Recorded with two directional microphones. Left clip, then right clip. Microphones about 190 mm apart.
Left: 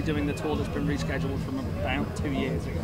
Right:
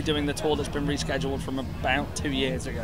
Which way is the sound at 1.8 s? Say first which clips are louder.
Right 5 dB; 30° right (ahead or behind).